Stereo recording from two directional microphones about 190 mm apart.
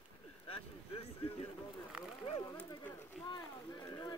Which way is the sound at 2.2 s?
25° left (ahead or behind).